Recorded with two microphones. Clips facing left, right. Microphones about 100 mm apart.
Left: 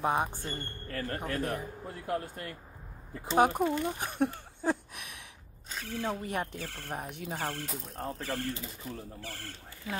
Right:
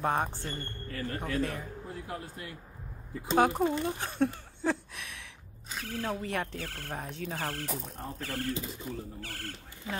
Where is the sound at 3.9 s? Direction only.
15° left (ahead or behind).